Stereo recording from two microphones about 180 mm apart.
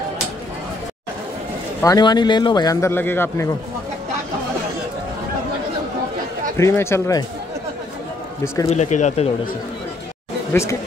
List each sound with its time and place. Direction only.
1.8 s speech: 20° left (ahead or behind)
6.5 s speech: 15° left (ahead or behind)
8.6 s speech: 40° left (ahead or behind)
10.5 s speech: 15° left (ahead or behind)